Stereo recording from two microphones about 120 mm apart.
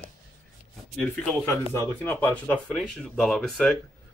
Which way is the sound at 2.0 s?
15° left (ahead or behind).